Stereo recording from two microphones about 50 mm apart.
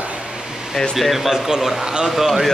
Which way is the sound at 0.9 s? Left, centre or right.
Centre.